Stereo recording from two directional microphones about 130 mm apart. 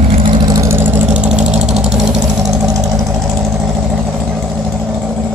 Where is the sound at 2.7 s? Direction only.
25° right (ahead or behind).